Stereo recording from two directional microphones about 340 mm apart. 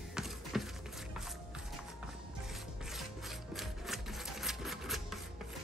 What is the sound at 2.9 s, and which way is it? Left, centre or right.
Rub, centre.